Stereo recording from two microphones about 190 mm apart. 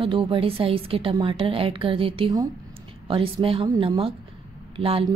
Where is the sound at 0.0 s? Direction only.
25° right (ahead or behind).